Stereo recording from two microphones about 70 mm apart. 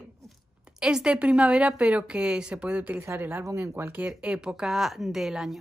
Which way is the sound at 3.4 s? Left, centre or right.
Right.